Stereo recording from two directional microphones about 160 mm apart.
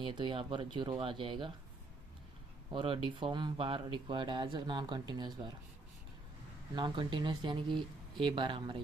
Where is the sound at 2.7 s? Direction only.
30° right (ahead or behind).